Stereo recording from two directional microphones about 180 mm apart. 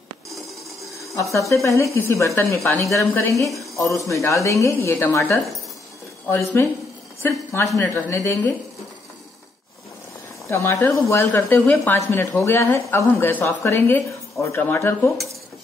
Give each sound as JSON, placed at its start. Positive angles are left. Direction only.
{"t": 1.5, "sound": "speech", "side_deg": 15}
{"t": 6.6, "sound": "speech", "side_deg": 15}
{"t": 10.5, "sound": "speech", "side_deg": 15}